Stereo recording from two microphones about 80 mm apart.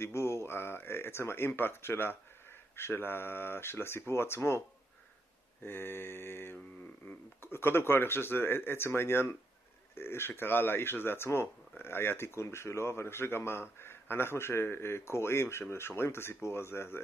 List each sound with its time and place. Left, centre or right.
0.0 s speech: left